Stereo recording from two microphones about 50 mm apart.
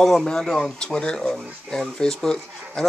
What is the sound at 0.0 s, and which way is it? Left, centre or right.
Speech, centre.